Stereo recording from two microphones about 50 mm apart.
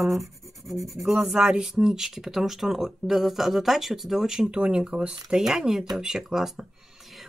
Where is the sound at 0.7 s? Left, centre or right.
Centre.